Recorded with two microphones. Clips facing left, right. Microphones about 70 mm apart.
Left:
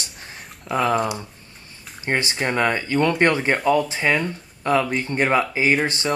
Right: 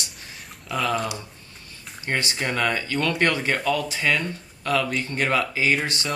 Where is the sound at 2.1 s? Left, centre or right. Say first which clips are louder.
Left 3 dB; left.